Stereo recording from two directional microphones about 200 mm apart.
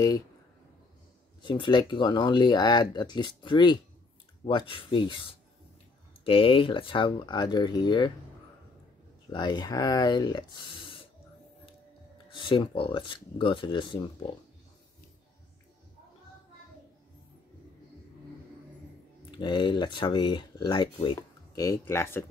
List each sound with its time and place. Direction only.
1.4 s speech: 20° left (ahead or behind)
6.2 s speech: 25° left (ahead or behind)
9.3 s speech: 20° left (ahead or behind)
12.3 s speech: 25° left (ahead or behind)
19.3 s speech: 25° left (ahead or behind)